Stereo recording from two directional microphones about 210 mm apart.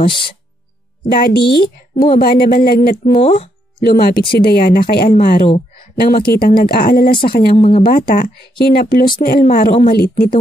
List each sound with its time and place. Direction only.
0.0 s speech: 25° left (ahead or behind)
1.1 s speech: 45° left (ahead or behind)
3.2 s speech: 30° left (ahead or behind)
3.8 s speech: 45° left (ahead or behind)
7.1 s speech: 25° left (ahead or behind)
7.8 s speech: 40° left (ahead or behind)